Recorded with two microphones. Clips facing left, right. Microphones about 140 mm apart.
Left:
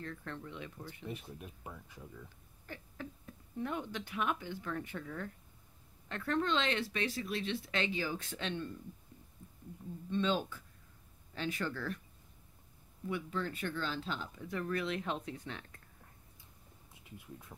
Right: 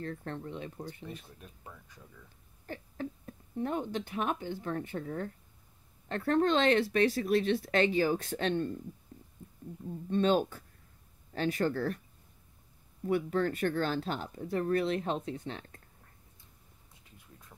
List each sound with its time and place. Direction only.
0.0 s speech: 40° right (ahead or behind)
1.4 s speech: 15° left (ahead or behind)
2.6 s speech: 40° right (ahead or behind)
10.0 s speech: 50° right (ahead or behind)
13.0 s speech: 50° right (ahead or behind); by 15.8 s 35° right (ahead or behind)
17.1 s bee: 15° left (ahead or behind)
17.5 s speech: 15° left (ahead or behind)